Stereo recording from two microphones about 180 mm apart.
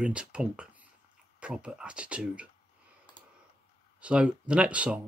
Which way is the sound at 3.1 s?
25° left (ahead or behind).